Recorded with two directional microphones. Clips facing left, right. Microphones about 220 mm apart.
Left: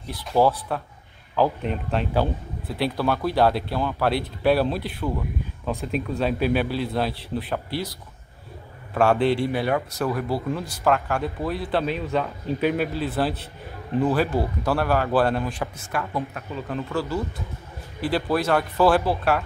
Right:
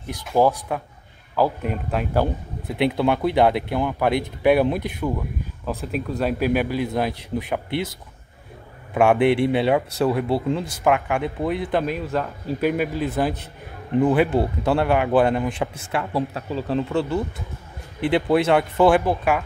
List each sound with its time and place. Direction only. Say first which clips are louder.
0.1 s a man's voice: right 1 dB; 15° right (ahead or behind)
2.7 s speech: right 4 dB; 20° right (ahead or behind)
5.7 s a man's voice: even; 5° right (ahead or behind)
8.9 s a man's voice: right 3 dB; 15° right (ahead or behind)
11.8 s a man's voice: even; 5° right (ahead or behind)